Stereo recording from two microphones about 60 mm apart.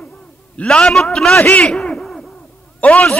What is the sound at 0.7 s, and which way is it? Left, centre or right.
Speech, centre.